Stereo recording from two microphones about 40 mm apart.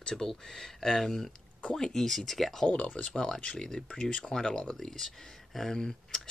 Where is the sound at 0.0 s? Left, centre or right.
Centre.